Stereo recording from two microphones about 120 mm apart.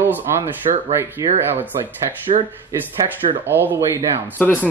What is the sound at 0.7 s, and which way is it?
Speech, 80° right.